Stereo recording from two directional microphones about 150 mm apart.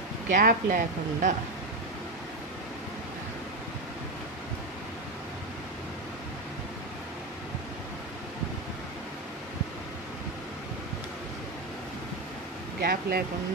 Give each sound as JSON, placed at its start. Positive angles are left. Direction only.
{"t": 0.3, "sound": "speech", "side_deg": -65}
{"t": 12.8, "sound": "speech", "side_deg": -90}